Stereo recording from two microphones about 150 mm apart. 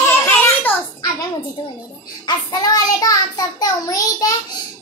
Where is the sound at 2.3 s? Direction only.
30° left (ahead or behind).